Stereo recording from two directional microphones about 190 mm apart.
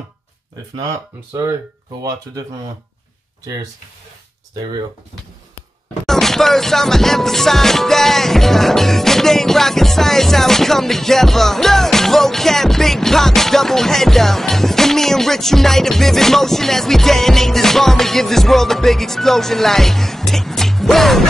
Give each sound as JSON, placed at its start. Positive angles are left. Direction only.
{"t": 0.7, "sound": "speech", "side_deg": -15}
{"t": 6.0, "sound": "music", "side_deg": 0}